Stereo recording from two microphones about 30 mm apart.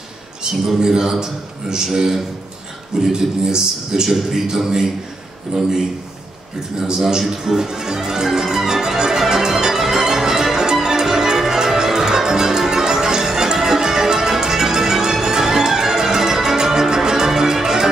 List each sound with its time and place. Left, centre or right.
0.7 s a man's voice: right
7.1 s a man's voice: right
7.4 s music: centre